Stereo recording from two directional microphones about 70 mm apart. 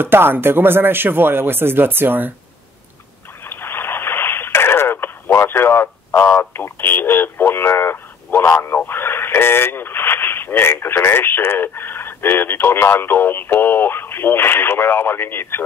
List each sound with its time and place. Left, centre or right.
0.0 s speech: right
3.4 s a sound: left
6.2 s speech: left